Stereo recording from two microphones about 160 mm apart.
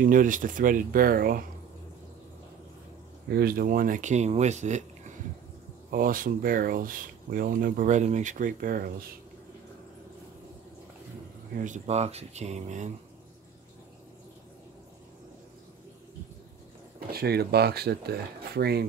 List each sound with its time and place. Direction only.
0.0 s speech: 55° right (ahead or behind)
3.3 s speech: 75° right (ahead or behind); by 5.1 s 45° right (ahead or behind)
5.9 s speech: 60° right (ahead or behind)
11.5 s speech: 50° right (ahead or behind)
17.1 s speech: 75° right (ahead or behind)